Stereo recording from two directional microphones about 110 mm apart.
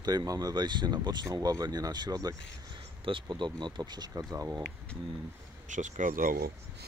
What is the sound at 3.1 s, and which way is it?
Speech, 45° right (ahead or behind).